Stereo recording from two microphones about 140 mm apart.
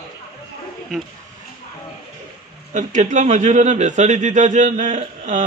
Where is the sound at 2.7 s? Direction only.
60° right (ahead or behind).